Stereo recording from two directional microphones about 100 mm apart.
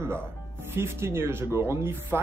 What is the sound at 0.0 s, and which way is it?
Speech, 25° right (ahead or behind).